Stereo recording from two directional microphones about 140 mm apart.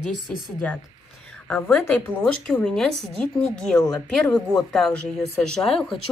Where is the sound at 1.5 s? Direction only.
10° left (ahead or behind).